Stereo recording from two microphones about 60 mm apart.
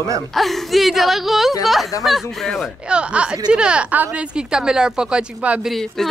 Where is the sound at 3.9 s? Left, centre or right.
Right.